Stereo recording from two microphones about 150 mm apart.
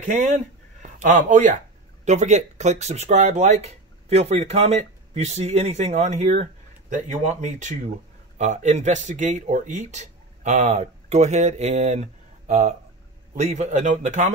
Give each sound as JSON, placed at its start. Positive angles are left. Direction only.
{"t": 0.0, "sound": "speech", "side_deg": -50}